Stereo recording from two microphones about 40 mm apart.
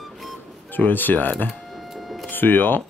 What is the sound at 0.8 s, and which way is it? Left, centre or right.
Speech, left.